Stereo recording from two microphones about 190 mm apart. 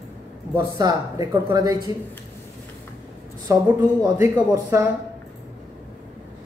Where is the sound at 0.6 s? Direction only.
20° right (ahead or behind).